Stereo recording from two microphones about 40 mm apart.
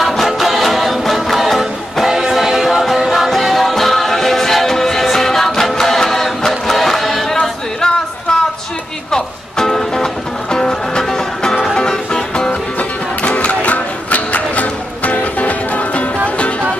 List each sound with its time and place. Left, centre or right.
0.0 s music: centre
12.7 s music: left